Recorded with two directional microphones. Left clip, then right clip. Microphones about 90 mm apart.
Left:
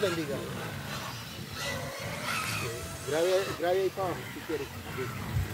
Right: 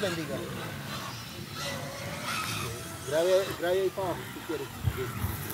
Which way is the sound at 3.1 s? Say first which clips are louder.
Right 2 dB; 35° left (ahead or behind).